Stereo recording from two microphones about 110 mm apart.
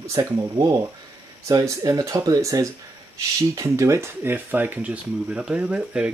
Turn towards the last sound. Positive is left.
turn(degrees=-10)  # may be behind; listen again after turning